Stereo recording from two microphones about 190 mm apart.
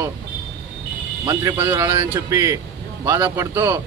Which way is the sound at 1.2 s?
20° right (ahead or behind).